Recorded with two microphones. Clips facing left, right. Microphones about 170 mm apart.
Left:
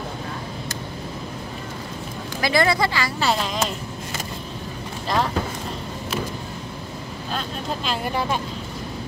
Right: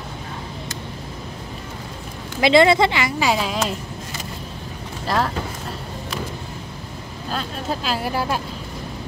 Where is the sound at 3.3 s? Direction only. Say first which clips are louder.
Right 2 dB; 5° right (ahead or behind).